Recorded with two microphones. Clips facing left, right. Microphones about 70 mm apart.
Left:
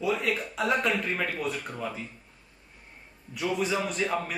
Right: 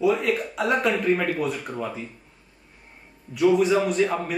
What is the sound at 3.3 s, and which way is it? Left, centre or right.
Speech, centre.